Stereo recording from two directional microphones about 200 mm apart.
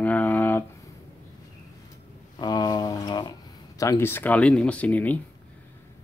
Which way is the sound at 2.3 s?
20° left (ahead or behind).